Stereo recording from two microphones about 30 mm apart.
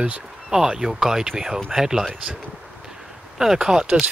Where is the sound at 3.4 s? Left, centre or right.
Centre.